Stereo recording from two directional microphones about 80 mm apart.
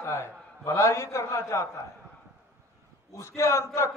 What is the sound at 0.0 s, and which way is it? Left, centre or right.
A man's voice, left.